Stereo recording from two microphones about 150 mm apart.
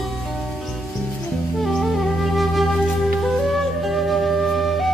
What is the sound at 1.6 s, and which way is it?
Flute, centre (ahead or behind).